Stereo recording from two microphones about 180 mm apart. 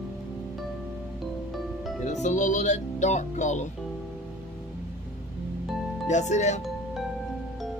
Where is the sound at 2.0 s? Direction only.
40° left (ahead or behind).